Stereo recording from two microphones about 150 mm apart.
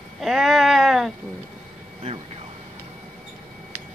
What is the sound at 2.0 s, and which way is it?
Vehicle, 45° right (ahead or behind).